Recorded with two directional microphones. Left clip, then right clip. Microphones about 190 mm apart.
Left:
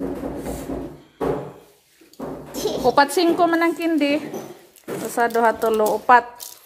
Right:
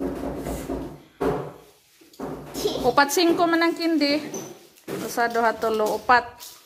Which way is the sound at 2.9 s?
15° left (ahead or behind).